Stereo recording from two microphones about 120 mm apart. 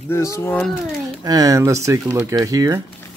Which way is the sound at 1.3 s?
30° right (ahead or behind).